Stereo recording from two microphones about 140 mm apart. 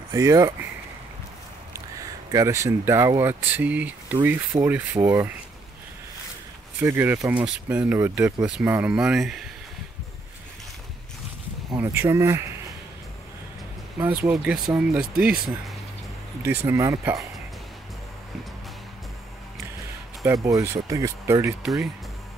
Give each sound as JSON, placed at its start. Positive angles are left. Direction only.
{"t": 0.1, "sound": "speech", "side_deg": -20}
{"t": 2.3, "sound": "speech", "side_deg": -20}
{"t": 6.8, "sound": "speech", "side_deg": -15}
{"t": 11.7, "sound": "speech", "side_deg": -15}
{"t": 14.0, "sound": "speech", "side_deg": -15}
{"t": 16.4, "sound": "speech", "side_deg": -20}
{"t": 20.4, "sound": "speech", "side_deg": -25}